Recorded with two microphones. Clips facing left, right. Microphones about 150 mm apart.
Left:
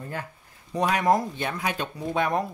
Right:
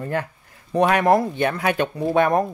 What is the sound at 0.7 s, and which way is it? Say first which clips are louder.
Speech: right 6 dB; 60° right (ahead or behind).